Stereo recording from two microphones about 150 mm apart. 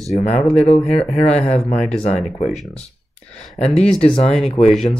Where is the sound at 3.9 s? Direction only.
40° left (ahead or behind).